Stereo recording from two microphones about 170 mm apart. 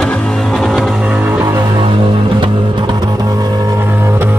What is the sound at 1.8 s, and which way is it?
Music, 30° right (ahead or behind).